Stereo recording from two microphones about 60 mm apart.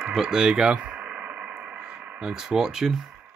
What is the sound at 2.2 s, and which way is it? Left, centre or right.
Speech, centre.